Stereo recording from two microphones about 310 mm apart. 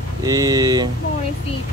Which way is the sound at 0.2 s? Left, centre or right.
Centre.